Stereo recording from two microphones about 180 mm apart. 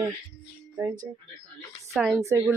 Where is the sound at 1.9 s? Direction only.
Centre (ahead or behind).